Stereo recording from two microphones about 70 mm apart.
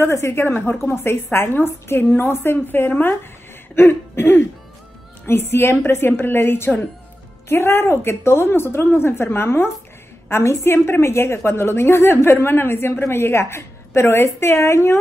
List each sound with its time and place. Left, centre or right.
0.0 s a woman's voice: left